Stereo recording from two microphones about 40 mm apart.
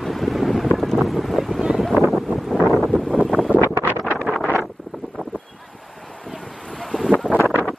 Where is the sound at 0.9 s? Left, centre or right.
Centre.